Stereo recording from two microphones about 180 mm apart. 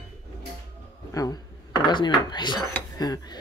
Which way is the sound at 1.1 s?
20° left (ahead or behind).